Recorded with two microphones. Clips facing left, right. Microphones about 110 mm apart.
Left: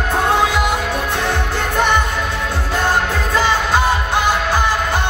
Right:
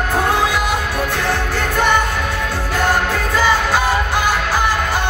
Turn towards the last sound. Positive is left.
turn(degrees=20)  # may be behind; listen again after turning